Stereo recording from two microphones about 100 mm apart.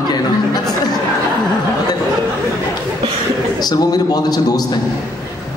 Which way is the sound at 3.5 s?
40° left (ahead or behind).